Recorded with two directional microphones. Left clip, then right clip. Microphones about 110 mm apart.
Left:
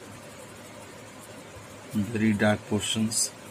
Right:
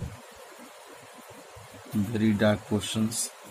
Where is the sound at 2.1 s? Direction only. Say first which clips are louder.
Even; 75° right (ahead or behind).